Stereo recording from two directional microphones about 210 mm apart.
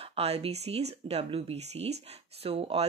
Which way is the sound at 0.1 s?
30° right (ahead or behind).